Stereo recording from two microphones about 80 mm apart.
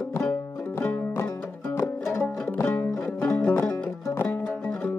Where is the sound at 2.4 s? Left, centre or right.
Left.